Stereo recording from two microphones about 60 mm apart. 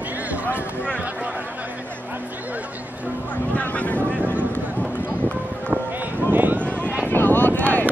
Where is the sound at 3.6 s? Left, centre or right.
Left.